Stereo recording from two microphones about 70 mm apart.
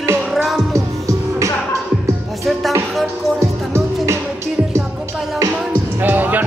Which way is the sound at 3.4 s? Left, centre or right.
Right.